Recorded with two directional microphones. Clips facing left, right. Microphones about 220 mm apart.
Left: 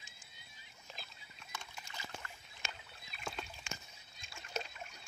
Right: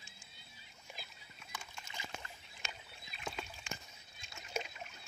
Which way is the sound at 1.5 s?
5° right (ahead or behind).